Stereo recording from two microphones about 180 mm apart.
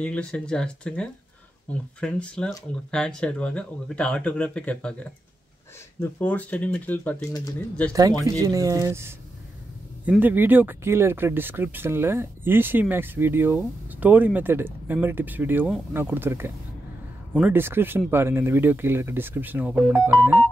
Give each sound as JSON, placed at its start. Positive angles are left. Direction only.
{"t": 0.0, "sound": "speech", "side_deg": 5}
{"t": 5.9, "sound": "speech", "side_deg": 10}
{"t": 8.2, "sound": "speech", "side_deg": -20}